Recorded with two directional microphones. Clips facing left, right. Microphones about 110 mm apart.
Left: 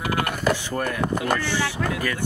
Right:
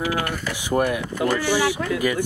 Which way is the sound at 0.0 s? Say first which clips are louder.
Left 1 dB; 50° left (ahead or behind).